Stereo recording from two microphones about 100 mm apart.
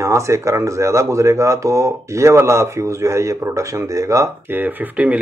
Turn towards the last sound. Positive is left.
turn(degrees=-15)  # may be behind; listen again after turning